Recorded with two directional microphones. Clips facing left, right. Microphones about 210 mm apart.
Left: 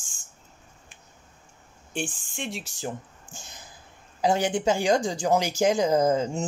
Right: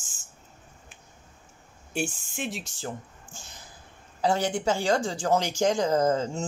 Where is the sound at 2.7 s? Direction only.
15° left (ahead or behind).